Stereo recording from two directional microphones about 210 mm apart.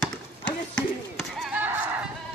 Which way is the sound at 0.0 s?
5° left (ahead or behind).